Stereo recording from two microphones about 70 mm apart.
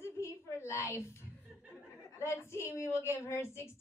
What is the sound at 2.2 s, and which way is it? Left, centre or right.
A woman's voice, left.